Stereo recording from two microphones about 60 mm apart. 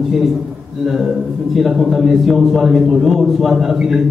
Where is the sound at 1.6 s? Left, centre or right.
Centre.